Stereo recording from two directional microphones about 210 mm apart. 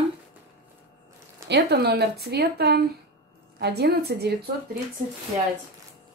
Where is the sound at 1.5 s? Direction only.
55° right (ahead or behind).